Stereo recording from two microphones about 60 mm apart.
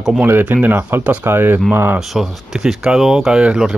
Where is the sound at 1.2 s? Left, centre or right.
Right.